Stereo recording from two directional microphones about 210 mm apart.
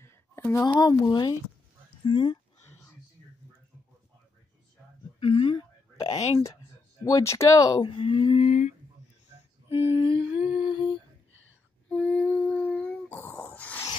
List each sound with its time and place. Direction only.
0.0 s speech: 10° left (ahead or behind)
5.2 s speech: 25° left (ahead or behind)
7.1 s speech: 15° left (ahead or behind); by 8.7 s 35° left (ahead or behind)
9.7 s speech: 20° left (ahead or behind)
10.5 s humming: 20° left (ahead or behind)
11.9 s a sound: 5° left (ahead or behind)